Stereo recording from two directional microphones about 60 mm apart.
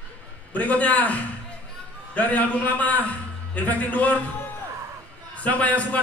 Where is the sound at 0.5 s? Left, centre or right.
Left.